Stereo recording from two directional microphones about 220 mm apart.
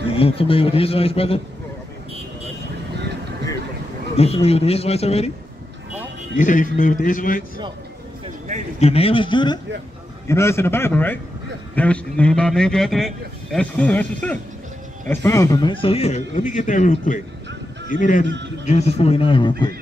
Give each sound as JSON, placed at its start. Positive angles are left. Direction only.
{"t": 0.1, "sound": "speech", "side_deg": 25}
{"t": 4.2, "sound": "speech", "side_deg": 25}
{"t": 6.3, "sound": "a man's voice", "side_deg": 35}
{"t": 8.7, "sound": "a man's voice", "side_deg": 25}